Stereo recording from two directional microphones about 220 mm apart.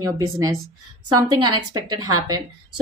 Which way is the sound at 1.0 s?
20° right (ahead or behind).